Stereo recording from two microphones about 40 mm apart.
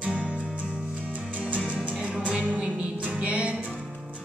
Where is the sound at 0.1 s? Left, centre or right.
Right.